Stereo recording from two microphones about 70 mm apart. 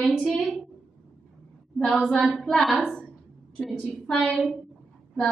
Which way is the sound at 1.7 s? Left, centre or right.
Centre.